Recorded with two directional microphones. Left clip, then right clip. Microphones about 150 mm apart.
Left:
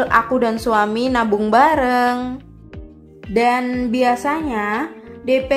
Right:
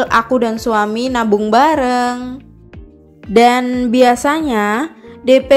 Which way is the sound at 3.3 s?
30° right (ahead or behind).